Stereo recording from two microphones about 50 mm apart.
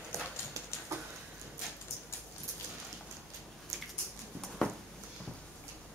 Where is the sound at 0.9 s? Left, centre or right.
Right.